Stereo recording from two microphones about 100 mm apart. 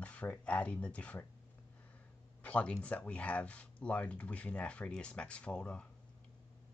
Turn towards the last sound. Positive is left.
turn(degrees=10)  # may be behind; listen again after turning